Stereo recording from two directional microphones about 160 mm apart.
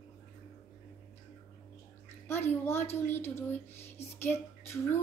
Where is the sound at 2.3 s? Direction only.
15° left (ahead or behind).